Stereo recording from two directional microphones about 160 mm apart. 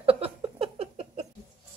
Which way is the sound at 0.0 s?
35° right (ahead or behind).